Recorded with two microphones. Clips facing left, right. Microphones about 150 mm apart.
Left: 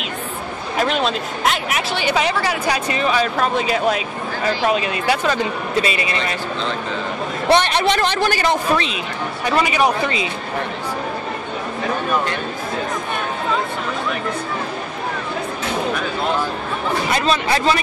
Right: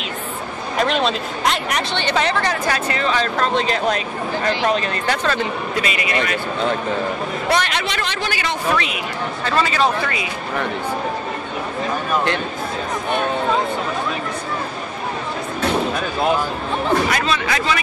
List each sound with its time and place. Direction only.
0.7 s speech: centre (ahead or behind)
5.8 s speech: 30° left (ahead or behind)
7.4 s speech: 30° left (ahead or behind)
8.2 s speech: 40° left (ahead or behind)
9.4 s speech: 15° left (ahead or behind)
17.1 s speech: 35° left (ahead or behind)